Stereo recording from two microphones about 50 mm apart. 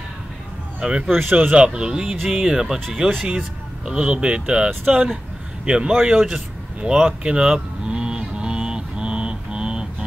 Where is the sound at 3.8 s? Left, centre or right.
Centre.